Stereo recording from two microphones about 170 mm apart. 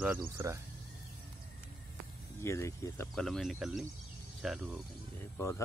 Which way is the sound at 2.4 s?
15° left (ahead or behind).